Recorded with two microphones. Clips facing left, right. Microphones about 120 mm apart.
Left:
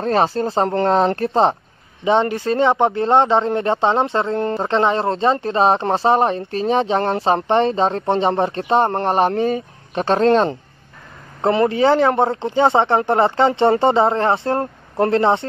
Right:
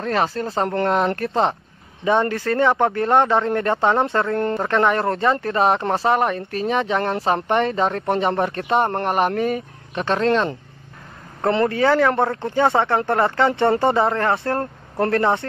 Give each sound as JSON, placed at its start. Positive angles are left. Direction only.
{"t": 0.0, "sound": "speech", "side_deg": 30}
{"t": 11.4, "sound": "speech", "side_deg": 20}